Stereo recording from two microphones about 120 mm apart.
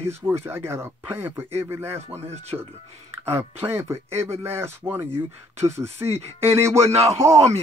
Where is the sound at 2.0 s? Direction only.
60° right (ahead or behind).